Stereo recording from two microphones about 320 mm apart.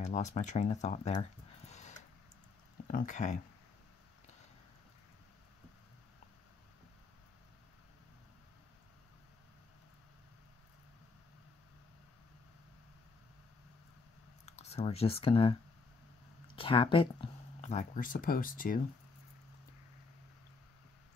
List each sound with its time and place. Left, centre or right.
0.0 s speech: left
1.7 s a sound: left
2.9 s speech: left
14.4 s speech: centre
16.5 s speech: centre